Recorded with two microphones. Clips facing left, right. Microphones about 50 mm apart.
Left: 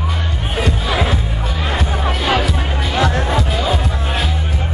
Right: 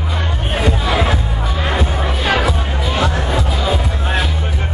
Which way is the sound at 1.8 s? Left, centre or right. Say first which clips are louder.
Even; right.